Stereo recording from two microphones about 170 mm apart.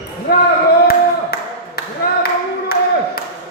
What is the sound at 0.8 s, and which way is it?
Clapping, 65° left (ahead or behind).